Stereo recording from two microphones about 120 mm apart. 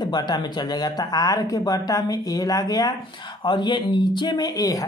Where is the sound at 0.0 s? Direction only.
35° left (ahead or behind).